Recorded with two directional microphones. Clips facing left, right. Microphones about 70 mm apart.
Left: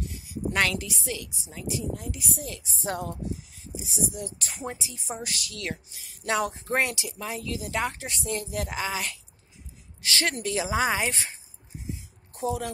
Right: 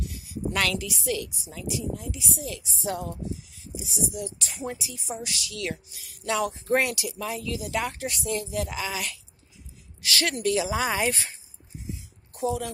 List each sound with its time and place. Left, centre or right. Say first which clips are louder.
0.5 s a woman's voice: left 1 dB; left
1.7 s speech: even; left
2.0 s a woman's voice: right 1 dB; left
8.4 s speech: right 1 dB; left
12.4 s speech: right 1 dB; left